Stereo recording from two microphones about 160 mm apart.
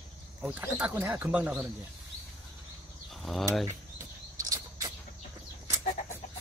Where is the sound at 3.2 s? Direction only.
Centre (ahead or behind).